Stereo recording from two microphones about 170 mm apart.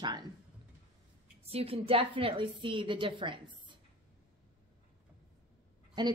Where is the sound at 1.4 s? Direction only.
35° right (ahead or behind).